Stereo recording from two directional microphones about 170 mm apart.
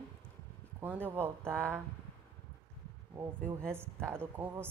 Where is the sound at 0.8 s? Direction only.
10° right (ahead or behind).